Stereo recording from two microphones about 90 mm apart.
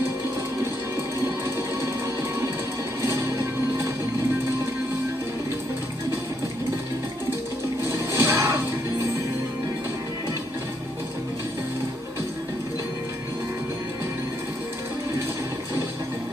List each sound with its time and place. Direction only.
3.0 s music: 35° right (ahead or behind)
7.9 s music: 30° right (ahead or behind)